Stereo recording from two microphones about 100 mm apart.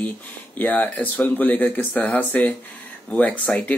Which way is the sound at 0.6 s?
15° left (ahead or behind).